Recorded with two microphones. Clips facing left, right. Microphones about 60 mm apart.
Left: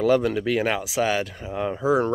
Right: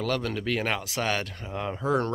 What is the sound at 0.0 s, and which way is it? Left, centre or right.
Speech, centre.